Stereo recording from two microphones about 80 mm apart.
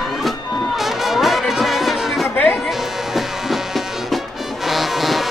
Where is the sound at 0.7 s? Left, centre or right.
Centre.